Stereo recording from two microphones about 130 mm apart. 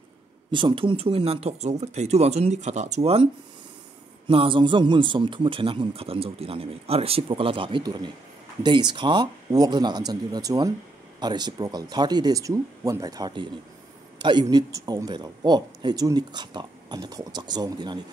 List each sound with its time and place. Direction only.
0.5 s speech: 40° right (ahead or behind)
4.3 s speech: 40° right (ahead or behind)